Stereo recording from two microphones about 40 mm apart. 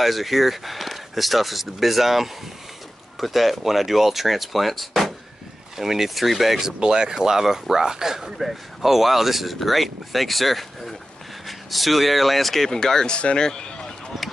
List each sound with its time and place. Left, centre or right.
0.0 s speech: centre
6.8 s speech: centre; by 13.5 s left
13.5 s run: left